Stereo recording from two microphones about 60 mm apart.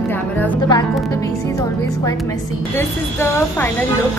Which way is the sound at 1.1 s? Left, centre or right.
Left.